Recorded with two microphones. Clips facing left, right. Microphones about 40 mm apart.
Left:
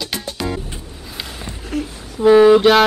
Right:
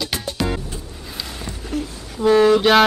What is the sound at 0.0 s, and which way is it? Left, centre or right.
Music, centre.